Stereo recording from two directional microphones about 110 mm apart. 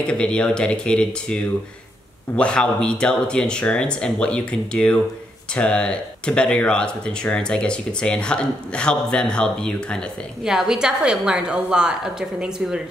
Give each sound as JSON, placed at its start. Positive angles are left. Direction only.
{"t": 0.0, "sound": "speech", "side_deg": 10}
{"t": 10.4, "sound": "a woman's voice", "side_deg": -5}